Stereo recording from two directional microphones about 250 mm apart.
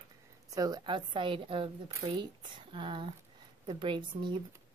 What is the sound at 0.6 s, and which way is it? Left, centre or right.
A woman's voice, centre.